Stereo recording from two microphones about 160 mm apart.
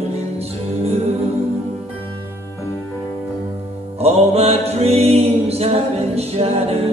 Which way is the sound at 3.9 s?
40° right (ahead or behind).